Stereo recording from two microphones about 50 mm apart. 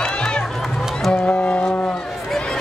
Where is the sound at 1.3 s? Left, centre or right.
Left.